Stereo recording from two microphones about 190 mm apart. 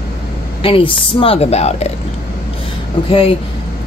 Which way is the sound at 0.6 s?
30° left (ahead or behind).